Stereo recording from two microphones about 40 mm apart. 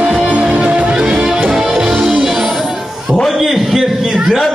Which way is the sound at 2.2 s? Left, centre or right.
Centre.